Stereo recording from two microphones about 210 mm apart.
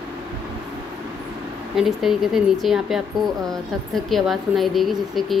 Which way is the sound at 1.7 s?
Centre (ahead or behind).